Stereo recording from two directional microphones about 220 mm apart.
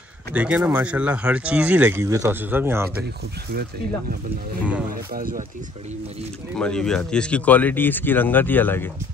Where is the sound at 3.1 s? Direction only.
45° right (ahead or behind); by 6.2 s 30° right (ahead or behind).